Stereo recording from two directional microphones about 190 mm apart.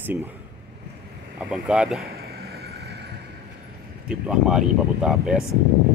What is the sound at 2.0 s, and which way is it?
Vehicle, 55° right (ahead or behind).